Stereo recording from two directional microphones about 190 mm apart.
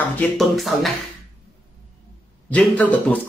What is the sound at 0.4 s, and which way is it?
Speech, centre (ahead or behind).